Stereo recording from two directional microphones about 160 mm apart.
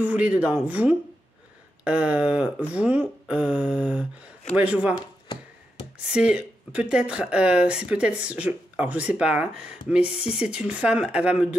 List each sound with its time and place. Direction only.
0.0 s speech: 10° right (ahead or behind)
4.9 s a sound: 25° left (ahead or behind)
5.9 s speech: 5° right (ahead or behind)